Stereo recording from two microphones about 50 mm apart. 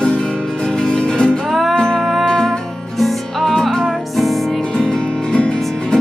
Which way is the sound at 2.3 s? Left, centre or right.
Centre.